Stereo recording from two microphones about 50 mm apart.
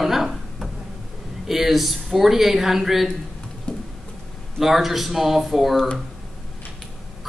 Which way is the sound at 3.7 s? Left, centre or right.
Left.